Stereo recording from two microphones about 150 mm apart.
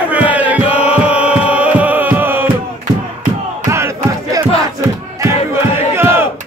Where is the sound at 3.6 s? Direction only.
20° right (ahead or behind).